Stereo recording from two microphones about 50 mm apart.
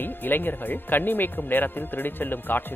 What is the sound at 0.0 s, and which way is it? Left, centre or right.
A man's voice, left.